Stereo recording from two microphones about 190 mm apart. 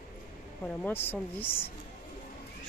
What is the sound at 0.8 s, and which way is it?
Speech, 10° left (ahead or behind).